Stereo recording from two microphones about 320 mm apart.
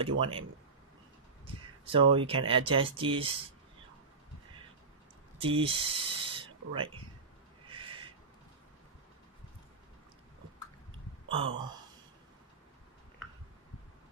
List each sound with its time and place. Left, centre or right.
0.2 s speech: centre
5.4 s speech: centre
7.7 s owl: centre
11.2 s speech: centre